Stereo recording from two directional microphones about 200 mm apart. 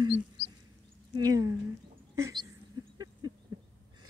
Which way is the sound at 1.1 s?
20° right (ahead or behind).